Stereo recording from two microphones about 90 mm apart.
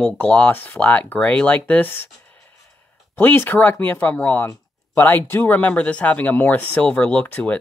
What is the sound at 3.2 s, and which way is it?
Speech, 20° left (ahead or behind).